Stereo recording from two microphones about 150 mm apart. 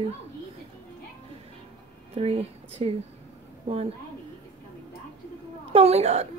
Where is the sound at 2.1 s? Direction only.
40° right (ahead or behind).